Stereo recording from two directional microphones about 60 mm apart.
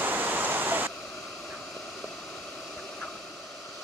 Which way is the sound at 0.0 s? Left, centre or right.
Right.